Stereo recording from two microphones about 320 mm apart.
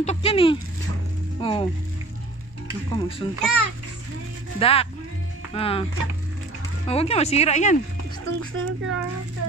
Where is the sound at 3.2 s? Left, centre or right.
Centre.